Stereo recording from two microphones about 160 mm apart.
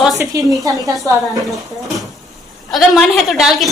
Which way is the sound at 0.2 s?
20° right (ahead or behind).